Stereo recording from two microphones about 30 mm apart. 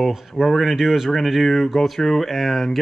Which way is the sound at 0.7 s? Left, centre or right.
Centre.